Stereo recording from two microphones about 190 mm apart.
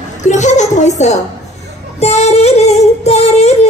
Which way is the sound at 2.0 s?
35° left (ahead or behind).